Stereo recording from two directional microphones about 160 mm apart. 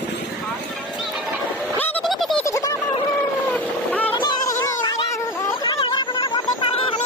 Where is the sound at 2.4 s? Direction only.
20° left (ahead or behind).